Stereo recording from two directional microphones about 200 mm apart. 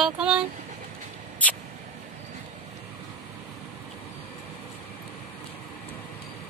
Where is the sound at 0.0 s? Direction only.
5° right (ahead or behind).